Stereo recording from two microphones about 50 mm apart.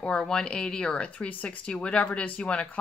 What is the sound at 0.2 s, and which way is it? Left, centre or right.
Speech, centre.